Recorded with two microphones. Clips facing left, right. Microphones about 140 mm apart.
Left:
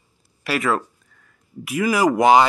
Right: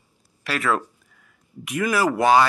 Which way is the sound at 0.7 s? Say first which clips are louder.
Left 1 dB; 5° right (ahead or behind).